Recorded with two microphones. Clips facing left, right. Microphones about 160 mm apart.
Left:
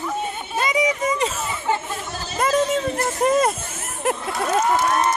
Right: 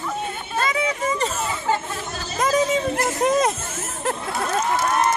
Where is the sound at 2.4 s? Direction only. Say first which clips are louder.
Even; centre (ahead or behind).